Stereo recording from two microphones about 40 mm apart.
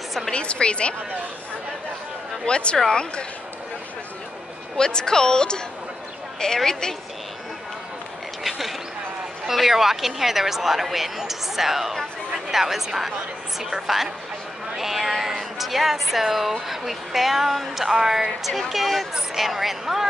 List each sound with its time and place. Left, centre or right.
0.3 s a woman's voice: left
2.4 s a woman's voice: left
4.7 s a woman's voice: centre
8.5 s a sound: centre
9.5 s speech: centre
14.8 s a sound: centre
15.6 s speech: centre